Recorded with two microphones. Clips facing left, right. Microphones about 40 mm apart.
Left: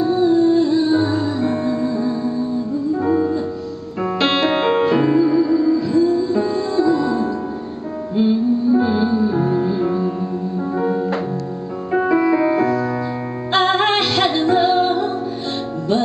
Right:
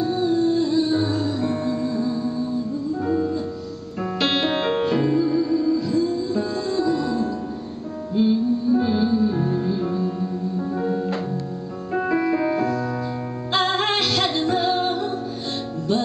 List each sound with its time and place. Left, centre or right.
0.0 s music: centre